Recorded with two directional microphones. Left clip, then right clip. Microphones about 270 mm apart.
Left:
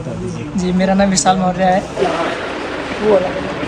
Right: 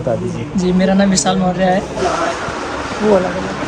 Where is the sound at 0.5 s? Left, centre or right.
Centre.